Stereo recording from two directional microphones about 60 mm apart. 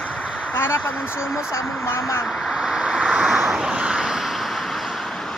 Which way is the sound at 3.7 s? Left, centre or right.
Centre.